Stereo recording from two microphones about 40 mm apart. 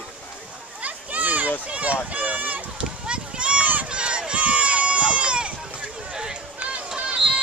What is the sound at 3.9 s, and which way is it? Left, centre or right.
Run, right.